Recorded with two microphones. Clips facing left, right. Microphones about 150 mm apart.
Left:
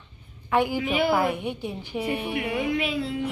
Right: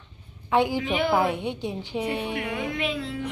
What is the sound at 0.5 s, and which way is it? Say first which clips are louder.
Speech: right 1 dB; 15° right (ahead or behind).